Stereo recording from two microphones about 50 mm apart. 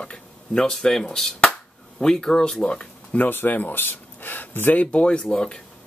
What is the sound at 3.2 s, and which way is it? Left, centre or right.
Speech, left.